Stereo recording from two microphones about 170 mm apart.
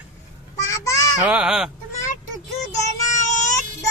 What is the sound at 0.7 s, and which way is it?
Children playing, 20° left (ahead or behind).